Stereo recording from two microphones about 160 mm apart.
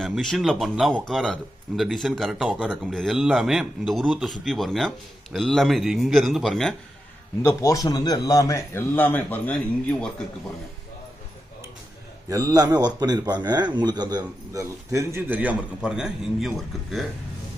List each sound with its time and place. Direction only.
0.0 s a man's voice: centre (ahead or behind)
7.4 s a man's voice: 20° left (ahead or behind)
12.3 s a man's voice: 20° right (ahead or behind); by 17.0 s centre (ahead or behind)